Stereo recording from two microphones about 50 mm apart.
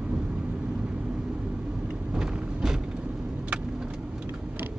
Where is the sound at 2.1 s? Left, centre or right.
Centre.